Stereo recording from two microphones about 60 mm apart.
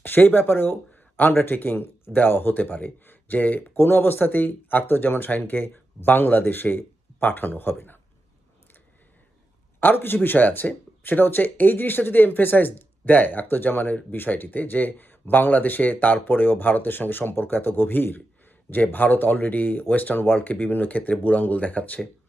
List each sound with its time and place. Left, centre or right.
0.0 s speech: left
9.8 s speech: left